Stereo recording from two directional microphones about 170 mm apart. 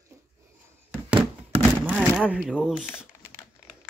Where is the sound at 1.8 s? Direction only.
5° right (ahead or behind).